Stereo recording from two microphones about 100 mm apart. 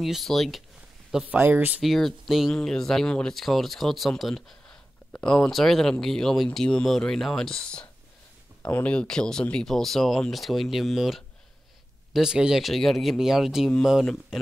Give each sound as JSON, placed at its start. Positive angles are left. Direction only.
{"t": 0.0, "sound": "speech", "side_deg": 0}
{"t": 1.2, "sound": "speech", "side_deg": -15}
{"t": 1.8, "sound": "speech", "side_deg": 0}